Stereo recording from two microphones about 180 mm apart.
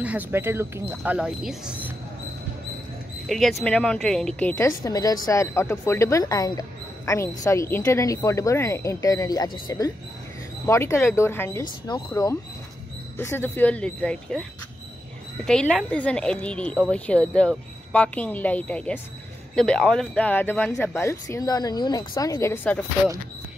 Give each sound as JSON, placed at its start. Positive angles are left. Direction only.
{"t": 0.0, "sound": "speech", "side_deg": -10}
{"t": 3.3, "sound": "speech", "side_deg": 0}
{"t": 15.4, "sound": "speech", "side_deg": 5}